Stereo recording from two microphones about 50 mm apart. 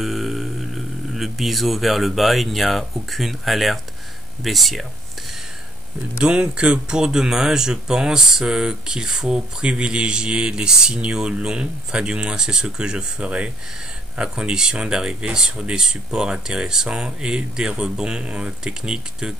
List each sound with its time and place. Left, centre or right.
0.0 s speech: centre
6.1 s speech: right